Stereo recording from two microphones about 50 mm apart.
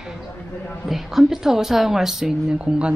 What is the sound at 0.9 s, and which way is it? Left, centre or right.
Speech, centre.